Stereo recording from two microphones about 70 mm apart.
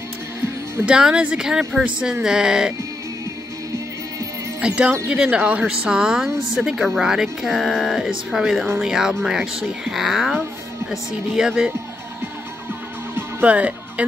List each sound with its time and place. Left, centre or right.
0.8 s speech: centre
4.6 s speech: centre
13.1 s music: right